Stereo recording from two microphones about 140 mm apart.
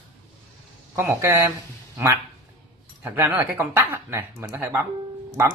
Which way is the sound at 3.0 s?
15° right (ahead or behind).